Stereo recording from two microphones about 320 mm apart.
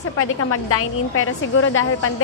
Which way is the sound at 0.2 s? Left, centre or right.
Left.